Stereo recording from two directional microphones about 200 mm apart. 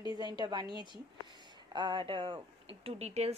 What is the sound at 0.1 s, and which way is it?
A woman's voice, 20° right (ahead or behind).